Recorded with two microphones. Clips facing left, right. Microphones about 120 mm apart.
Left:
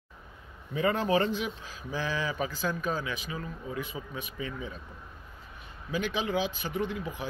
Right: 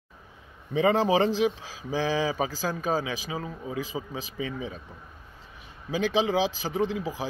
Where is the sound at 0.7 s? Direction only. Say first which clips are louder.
Right 4 dB; 90° right.